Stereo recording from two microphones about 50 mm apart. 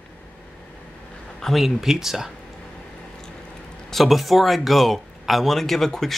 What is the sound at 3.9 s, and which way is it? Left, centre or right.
Speech, centre.